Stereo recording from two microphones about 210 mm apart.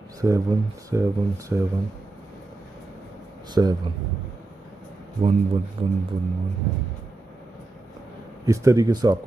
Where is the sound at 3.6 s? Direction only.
15° right (ahead or behind).